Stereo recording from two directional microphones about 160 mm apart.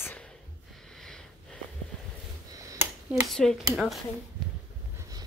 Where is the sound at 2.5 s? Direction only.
20° right (ahead or behind).